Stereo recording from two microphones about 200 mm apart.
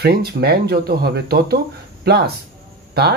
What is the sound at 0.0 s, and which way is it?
Speech, 55° right (ahead or behind).